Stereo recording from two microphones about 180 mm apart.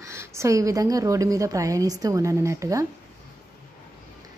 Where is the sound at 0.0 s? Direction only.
15° right (ahead or behind).